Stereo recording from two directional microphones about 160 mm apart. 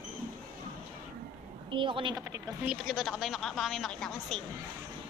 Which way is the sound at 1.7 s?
30° right (ahead or behind).